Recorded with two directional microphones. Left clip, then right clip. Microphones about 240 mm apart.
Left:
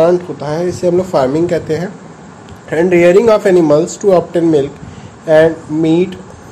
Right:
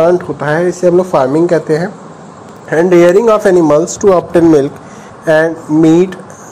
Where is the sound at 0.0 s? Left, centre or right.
Centre.